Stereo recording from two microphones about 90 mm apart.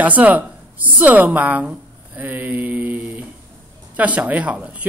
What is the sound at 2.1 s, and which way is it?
Mantra, 20° right (ahead or behind).